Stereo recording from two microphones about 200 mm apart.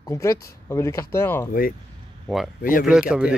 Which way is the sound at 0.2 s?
15° left (ahead or behind).